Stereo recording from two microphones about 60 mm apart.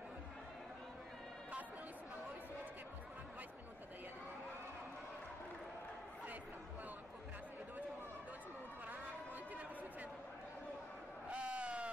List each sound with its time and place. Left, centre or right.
11.2 s sheep: right